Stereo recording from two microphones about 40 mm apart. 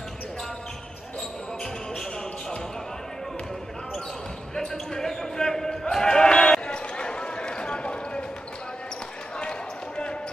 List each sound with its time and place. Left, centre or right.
4.6 s basketball bounce: centre; by 8.3 s left
9.4 s basketball bounce: left